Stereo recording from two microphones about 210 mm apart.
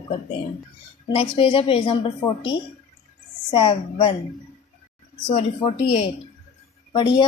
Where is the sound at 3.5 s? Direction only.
25° left (ahead or behind).